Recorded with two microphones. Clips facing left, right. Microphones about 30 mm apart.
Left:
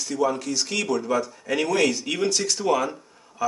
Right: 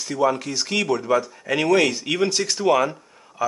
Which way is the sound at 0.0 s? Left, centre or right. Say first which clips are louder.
Right 3 dB; centre.